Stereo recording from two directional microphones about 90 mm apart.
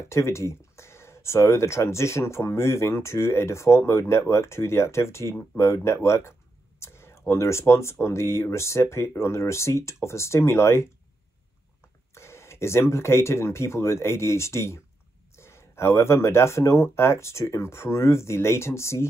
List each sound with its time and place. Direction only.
0.1 s speech: 30° left (ahead or behind)
12.1 s speech: 30° left (ahead or behind)